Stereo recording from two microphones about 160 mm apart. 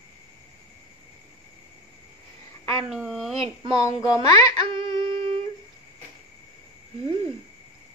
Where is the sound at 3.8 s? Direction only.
20° left (ahead or behind).